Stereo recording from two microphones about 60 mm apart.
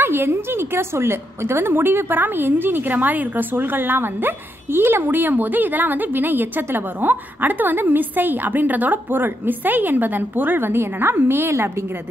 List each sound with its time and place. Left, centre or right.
0.0 s a woman's voice: right